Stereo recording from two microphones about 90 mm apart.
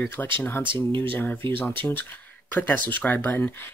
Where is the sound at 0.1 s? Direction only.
25° left (ahead or behind).